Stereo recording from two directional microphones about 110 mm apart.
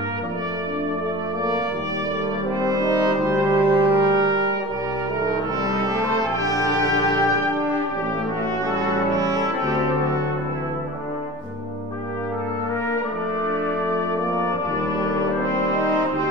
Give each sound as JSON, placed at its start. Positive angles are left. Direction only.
{"t": 3.5, "sound": "brass instrument", "side_deg": -50}